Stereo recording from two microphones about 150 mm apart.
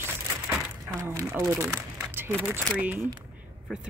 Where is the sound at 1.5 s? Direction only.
20° right (ahead or behind).